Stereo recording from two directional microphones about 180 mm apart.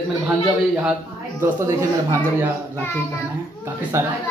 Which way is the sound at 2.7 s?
10° left (ahead or behind).